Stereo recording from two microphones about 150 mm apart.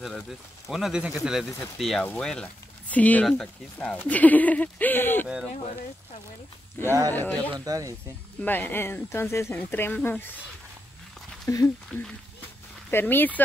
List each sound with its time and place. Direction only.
0.7 s speech: centre (ahead or behind); by 5.3 s 15° left (ahead or behind)
6.9 s speech: 20° right (ahead or behind)
7.2 s speech: 10° left (ahead or behind)
7.5 s speech: 25° right (ahead or behind)
8.4 s speech: 10° left (ahead or behind)
11.4 s speech: 20° left (ahead or behind)